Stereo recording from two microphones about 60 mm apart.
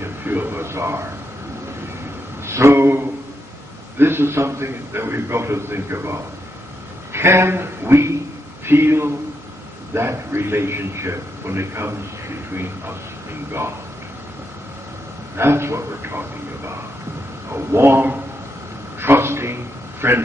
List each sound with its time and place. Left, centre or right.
0.0 s a man's voice: right
2.4 s a man's voice: right
15.3 s a man's voice: right
18.9 s a sound: right